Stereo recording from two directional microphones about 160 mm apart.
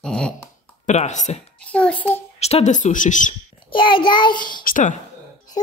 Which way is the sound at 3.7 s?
30° left (ahead or behind).